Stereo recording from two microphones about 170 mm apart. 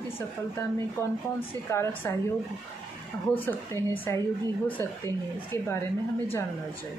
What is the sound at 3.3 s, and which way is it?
Speech, 10° left (ahead or behind).